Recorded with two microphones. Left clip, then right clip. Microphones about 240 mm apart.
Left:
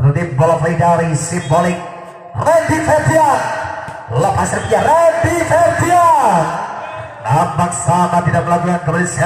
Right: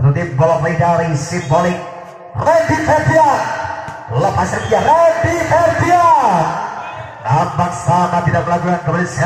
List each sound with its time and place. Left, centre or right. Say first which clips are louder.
0.1 s a man's voice: even; left
7.2 s a man's voice: left 1 dB; left